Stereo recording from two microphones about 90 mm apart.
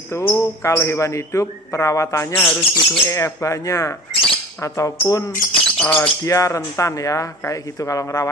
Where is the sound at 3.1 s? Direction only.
35° left (ahead or behind).